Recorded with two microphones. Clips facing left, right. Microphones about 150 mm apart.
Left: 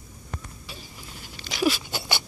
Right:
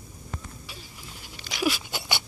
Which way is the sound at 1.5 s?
10° right (ahead or behind).